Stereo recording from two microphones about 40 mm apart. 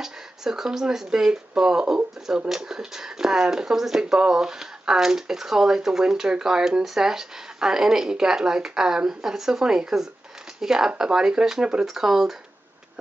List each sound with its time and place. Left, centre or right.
0.0 s speech: centre